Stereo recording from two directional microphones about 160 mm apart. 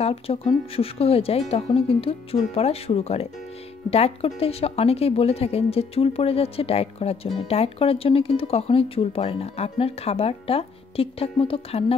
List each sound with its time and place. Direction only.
0.0 s speech: 35° left (ahead or behind)